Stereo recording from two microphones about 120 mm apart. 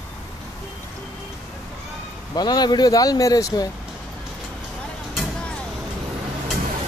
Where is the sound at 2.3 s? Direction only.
35° left (ahead or behind).